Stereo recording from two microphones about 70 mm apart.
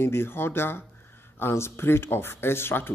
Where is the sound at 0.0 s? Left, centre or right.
Left.